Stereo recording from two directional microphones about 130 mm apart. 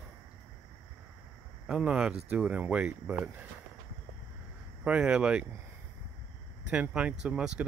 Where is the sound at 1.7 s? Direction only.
10° right (ahead or behind).